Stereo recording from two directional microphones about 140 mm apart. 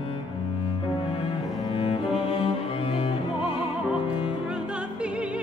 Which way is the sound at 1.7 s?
40° left (ahead or behind).